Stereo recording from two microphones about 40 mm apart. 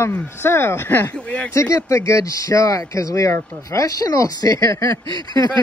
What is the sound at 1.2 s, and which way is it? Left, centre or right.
Speech, left.